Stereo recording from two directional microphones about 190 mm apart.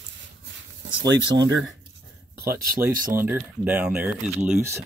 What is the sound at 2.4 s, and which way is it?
Speech, 50° right (ahead or behind).